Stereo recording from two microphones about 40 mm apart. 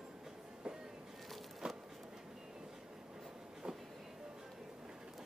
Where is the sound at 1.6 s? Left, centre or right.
Right.